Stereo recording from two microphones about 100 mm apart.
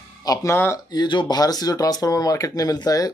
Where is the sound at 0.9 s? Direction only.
50° left (ahead or behind).